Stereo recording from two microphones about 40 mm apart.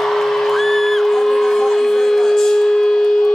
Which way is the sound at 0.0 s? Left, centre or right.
Centre.